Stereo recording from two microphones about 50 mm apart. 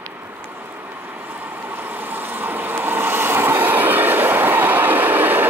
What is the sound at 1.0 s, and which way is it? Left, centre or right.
Vehicle, right.